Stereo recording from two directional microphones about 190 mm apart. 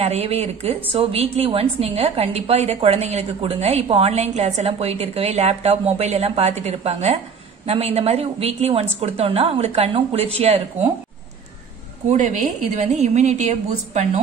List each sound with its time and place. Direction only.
0.0 s a woman's voice: 35° right (ahead or behind)
12.1 s a woman's voice: 35° right (ahead or behind)